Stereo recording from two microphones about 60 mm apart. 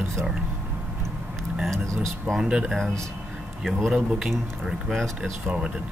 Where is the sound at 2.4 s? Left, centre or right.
Centre.